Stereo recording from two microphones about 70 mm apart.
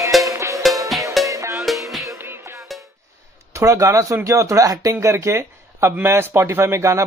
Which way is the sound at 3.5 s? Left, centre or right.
Right.